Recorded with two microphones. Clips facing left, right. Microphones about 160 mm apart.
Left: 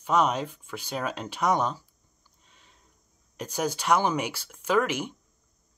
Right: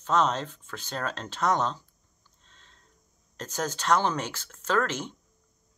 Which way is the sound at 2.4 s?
10° left (ahead or behind).